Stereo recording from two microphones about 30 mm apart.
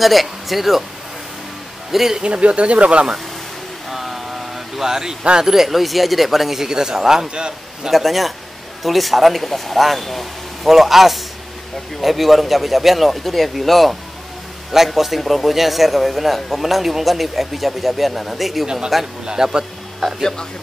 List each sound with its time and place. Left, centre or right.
0.0 s speech: centre
1.9 s speech: centre
2.2 s speech: right
3.9 s vehicle: centre
5.4 s speech: centre
6.6 s a man's voice: right
7.9 s speech: centre
10.7 s speech: centre
15.0 s speech: centre
19.2 s a man's voice: right